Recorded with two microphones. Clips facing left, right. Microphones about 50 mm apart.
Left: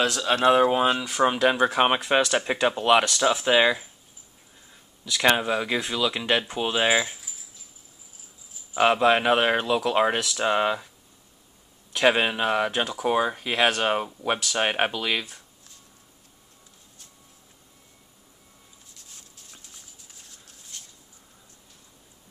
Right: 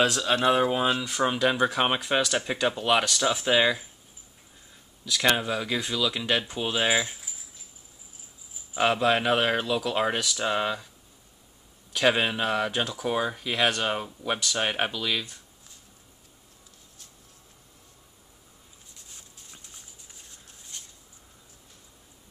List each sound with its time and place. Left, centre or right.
0.2 s speech: centre
5.2 s speech: centre
8.7 s speech: centre
11.9 s speech: centre
19.0 s a sound: centre